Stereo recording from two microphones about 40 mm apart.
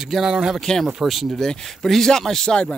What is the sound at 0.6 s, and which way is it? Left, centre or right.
Speech, centre.